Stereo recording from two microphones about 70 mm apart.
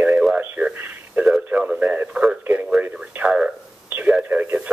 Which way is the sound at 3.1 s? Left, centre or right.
Centre.